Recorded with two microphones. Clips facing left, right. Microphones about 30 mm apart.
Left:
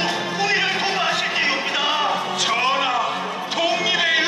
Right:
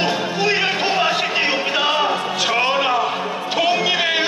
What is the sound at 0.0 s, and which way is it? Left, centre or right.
Music, centre.